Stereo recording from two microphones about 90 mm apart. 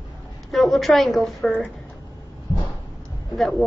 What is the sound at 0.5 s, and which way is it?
Speech, centre (ahead or behind).